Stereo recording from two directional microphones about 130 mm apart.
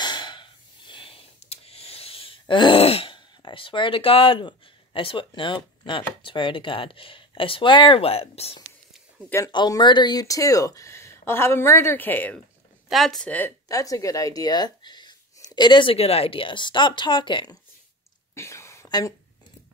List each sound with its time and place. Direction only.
0.0 s breathing: 35° left (ahead or behind)
9.5 s speech: 35° left (ahead or behind); by 12.4 s 15° left (ahead or behind)
12.8 s speech: centre (ahead or behind)
13.7 s speech: 25° left (ahead or behind)
18.3 s a sound: 20° left (ahead or behind)